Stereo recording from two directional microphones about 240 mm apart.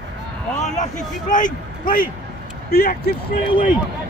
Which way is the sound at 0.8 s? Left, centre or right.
Left.